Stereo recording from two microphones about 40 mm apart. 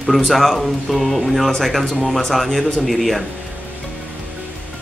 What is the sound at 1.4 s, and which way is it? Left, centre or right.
Speech, centre.